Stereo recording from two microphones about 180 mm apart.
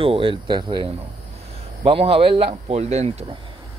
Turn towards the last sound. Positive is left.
turn(degrees=-35)  # may be behind; listen again after turning